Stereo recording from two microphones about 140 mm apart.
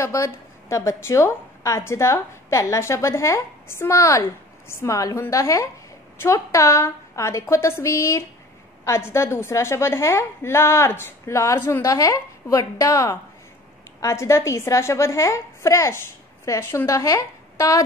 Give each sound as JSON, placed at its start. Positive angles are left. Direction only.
{"t": 0.0, "sound": "a woman's voice", "side_deg": 20}